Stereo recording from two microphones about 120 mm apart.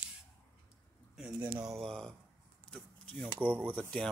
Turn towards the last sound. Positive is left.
turn(degrees=10)  # may be behind; listen again after turning